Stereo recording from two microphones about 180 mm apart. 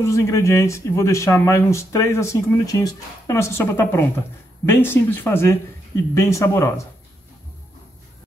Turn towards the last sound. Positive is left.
turn(degrees=15)  # may be behind; listen again after turning